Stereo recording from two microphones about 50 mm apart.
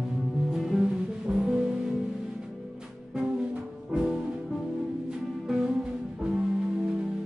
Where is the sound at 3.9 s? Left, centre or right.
Centre.